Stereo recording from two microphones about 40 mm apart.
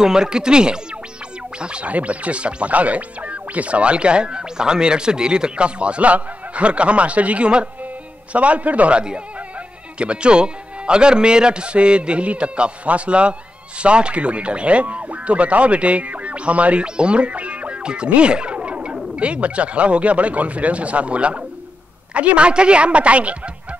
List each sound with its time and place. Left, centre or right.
0.0 s speech: centre; by 16.8 s right
16.8 s speech: right